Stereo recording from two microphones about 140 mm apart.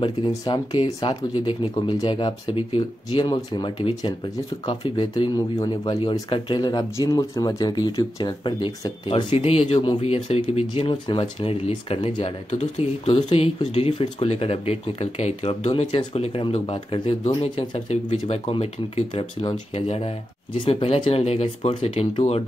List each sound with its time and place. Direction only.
0.3 s speech: 30° left (ahead or behind)